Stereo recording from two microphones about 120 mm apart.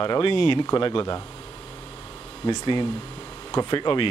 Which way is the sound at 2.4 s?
40° left (ahead or behind).